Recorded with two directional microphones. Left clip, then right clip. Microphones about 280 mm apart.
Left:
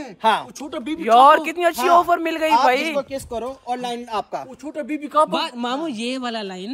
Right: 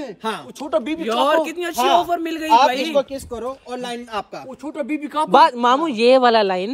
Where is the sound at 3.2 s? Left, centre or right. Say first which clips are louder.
Left 1 dB; centre.